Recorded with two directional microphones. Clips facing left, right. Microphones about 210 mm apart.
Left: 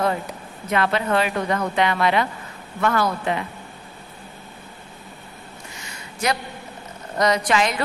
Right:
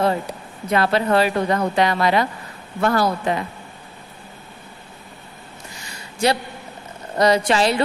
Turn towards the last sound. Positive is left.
turn(degrees=-30)  # may be behind; listen again after turning